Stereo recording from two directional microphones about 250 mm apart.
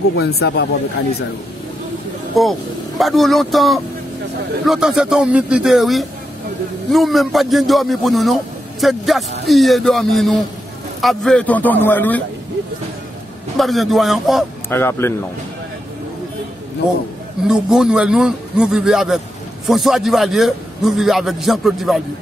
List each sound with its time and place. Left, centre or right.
0.4 s speech: left
2.4 s a man's voice: centre
13.6 s a man's voice: centre
17.5 s a man's voice: centre